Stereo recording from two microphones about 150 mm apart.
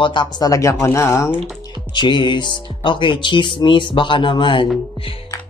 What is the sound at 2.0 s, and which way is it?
Speech, 30° left (ahead or behind).